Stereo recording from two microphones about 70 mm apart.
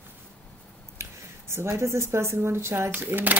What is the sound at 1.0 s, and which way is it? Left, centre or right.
Speech, right.